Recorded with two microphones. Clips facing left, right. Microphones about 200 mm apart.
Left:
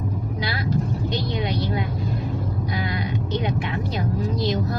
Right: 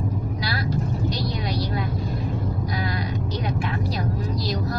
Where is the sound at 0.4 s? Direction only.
20° left (ahead or behind).